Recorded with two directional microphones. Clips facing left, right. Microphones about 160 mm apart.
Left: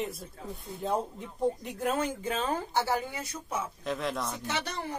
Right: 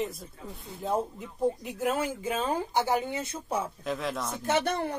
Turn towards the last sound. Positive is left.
turn(degrees=-55)  # may be behind; listen again after turning